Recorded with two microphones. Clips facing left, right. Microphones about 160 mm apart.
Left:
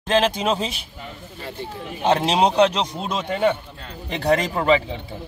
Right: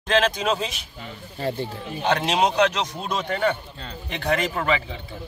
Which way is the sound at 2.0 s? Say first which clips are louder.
Left 3 dB; 30° left (ahead or behind).